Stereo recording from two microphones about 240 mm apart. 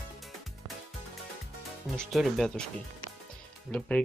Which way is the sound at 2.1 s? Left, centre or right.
Centre.